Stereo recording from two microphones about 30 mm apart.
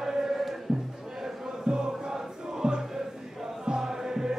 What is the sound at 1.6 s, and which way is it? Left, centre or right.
Music, right.